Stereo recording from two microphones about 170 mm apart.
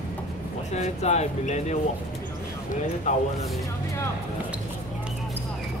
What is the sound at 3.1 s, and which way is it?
Speech, 45° left (ahead or behind).